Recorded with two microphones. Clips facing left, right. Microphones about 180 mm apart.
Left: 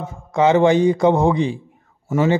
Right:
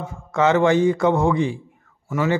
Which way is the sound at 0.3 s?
15° left (ahead or behind).